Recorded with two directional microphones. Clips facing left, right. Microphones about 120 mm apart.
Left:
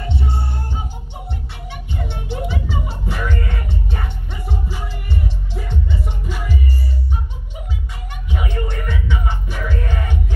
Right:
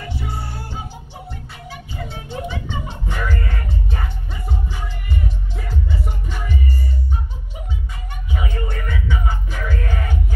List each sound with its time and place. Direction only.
0.0 s music: 25° left (ahead or behind)
1.7 s music: centre (ahead or behind)
8.5 s music: centre (ahead or behind)